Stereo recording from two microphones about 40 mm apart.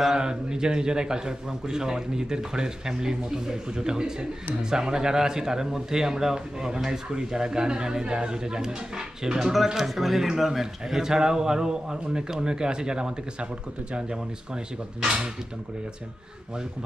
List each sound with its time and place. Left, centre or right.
0.0 s speech: centre
9.8 s speech: centre